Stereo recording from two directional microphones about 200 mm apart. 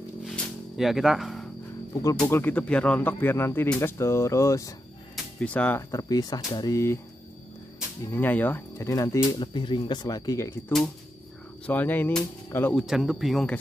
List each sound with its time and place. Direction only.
0.2 s a sound: centre (ahead or behind)
2.1 s speech: 10° left (ahead or behind)
8.1 s speech: 10° left (ahead or behind)
11.6 s speech: 10° left (ahead or behind)
12.8 s speech: centre (ahead or behind)